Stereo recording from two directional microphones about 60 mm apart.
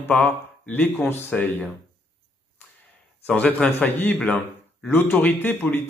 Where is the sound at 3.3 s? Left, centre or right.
Centre.